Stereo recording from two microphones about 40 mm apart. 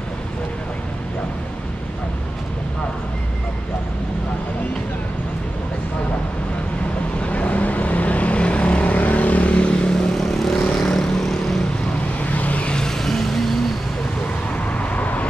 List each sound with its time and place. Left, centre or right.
7.2 s vehicle: left; by 11.6 s centre
12.2 s vehicle: left
12.6 s vehicle: centre
14.7 s vehicle: left